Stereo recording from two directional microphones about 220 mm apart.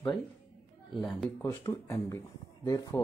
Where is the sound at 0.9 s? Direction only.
Centre (ahead or behind).